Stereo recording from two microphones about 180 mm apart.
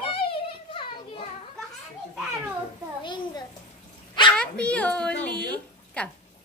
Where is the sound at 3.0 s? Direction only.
25° left (ahead or behind).